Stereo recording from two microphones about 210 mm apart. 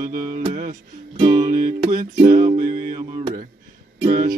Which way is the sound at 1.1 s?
20° right (ahead or behind).